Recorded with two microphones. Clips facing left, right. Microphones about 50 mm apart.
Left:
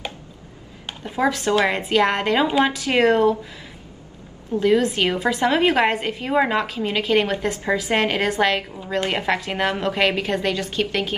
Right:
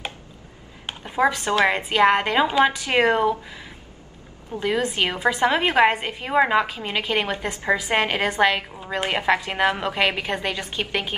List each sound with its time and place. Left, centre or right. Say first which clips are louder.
0.8 s speech: right 1 dB; centre
1.5 s speech: left 1 dB; centre
4.6 s a woman's voice: left 5 dB; centre